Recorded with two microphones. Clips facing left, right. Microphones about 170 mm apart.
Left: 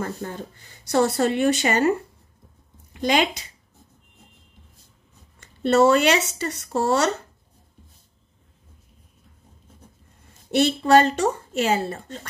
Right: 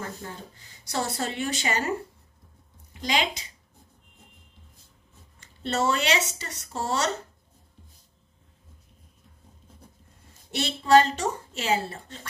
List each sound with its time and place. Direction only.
0.2 s speech: 70° left (ahead or behind)
0.8 s speech: 60° left (ahead or behind)
2.9 s speech: 55° left (ahead or behind)
5.6 s speech: 55° left (ahead or behind)
10.5 s a woman's voice: 50° left (ahead or behind)